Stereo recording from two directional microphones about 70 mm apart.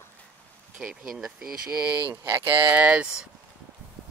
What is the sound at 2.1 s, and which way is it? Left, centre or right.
Speech, right.